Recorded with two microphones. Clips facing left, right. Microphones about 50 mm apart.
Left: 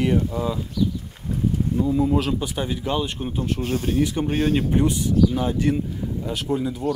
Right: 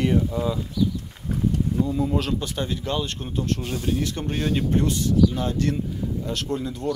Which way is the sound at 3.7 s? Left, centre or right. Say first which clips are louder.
Left 5 dB; left.